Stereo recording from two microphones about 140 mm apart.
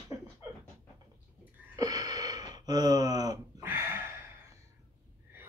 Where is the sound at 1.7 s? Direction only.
25° right (ahead or behind).